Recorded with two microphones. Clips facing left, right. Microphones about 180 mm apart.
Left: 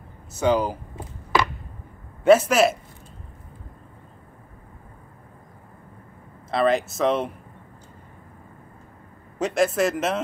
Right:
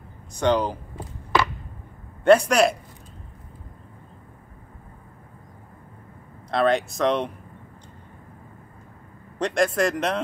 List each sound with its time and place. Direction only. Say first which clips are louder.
0.3 s speech: even; 5° left (ahead or behind)
0.9 s a sound: even; 15° left (ahead or behind)
2.2 s speech: even; 5° left (ahead or behind)
6.5 s speech: even; centre (ahead or behind)
9.4 s speech: left 1 dB; 5° left (ahead or behind)